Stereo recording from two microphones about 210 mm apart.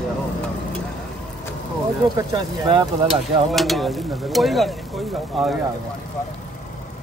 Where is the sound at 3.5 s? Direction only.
Centre (ahead or behind).